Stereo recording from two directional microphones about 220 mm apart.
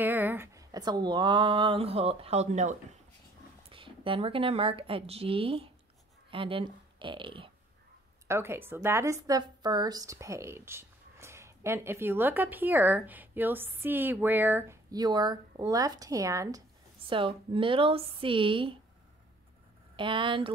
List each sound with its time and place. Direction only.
0.0 s a woman's voice: 10° right (ahead or behind)
8.3 s a woman's voice: 10° right (ahead or behind)
20.0 s speech: 20° right (ahead or behind)